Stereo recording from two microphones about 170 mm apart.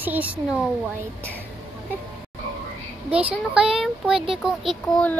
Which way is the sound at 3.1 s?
5° right (ahead or behind).